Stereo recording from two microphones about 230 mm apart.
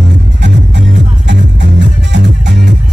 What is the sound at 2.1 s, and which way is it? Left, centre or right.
Music, right.